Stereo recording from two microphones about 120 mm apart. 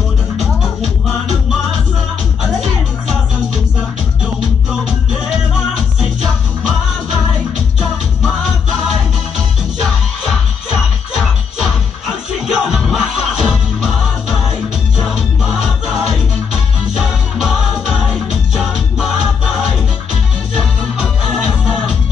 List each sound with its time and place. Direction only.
11.1 s music: 5° right (ahead or behind)
15.1 s music: 5° right (ahead or behind)
17.4 s music: 5° right (ahead or behind)
20.5 s music: 10° right (ahead or behind)